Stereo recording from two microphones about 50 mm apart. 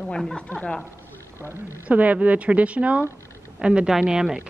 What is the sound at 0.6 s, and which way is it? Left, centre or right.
Speech, centre.